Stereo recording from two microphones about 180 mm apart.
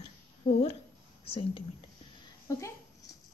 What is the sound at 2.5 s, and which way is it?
Speech, 15° left (ahead or behind).